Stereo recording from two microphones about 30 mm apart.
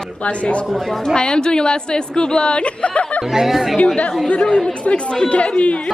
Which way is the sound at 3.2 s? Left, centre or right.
Centre.